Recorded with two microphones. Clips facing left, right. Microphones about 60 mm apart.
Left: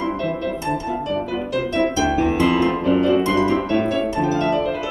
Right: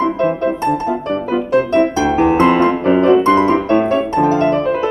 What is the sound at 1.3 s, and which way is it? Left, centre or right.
Music, right.